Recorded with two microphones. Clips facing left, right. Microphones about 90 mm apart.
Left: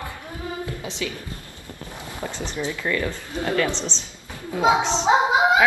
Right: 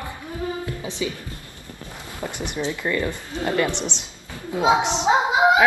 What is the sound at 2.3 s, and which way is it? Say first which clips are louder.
Speech: right 2 dB; 15° right (ahead or behind).